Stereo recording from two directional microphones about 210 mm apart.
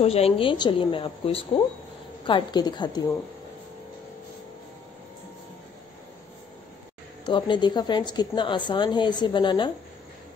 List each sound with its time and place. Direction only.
0.0 s a woman's voice: 30° left (ahead or behind)
7.2 s a woman's voice: 20° left (ahead or behind)